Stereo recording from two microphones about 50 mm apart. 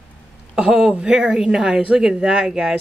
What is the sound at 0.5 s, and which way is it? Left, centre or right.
Speech, centre.